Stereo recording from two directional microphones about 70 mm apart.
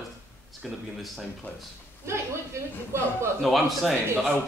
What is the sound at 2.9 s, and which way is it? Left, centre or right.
Speech, right.